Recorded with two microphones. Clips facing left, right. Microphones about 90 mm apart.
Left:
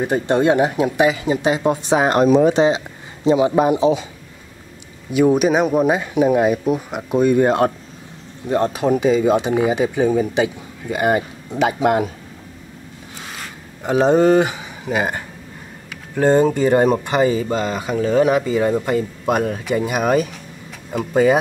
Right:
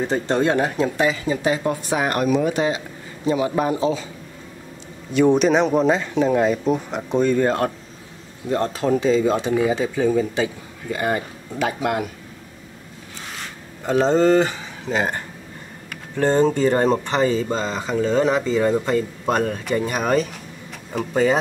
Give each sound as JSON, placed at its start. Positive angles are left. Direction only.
{"t": 0.0, "sound": "speech", "side_deg": 15}
{"t": 5.1, "sound": "speech", "side_deg": 5}
{"t": 13.8, "sound": "speech", "side_deg": 15}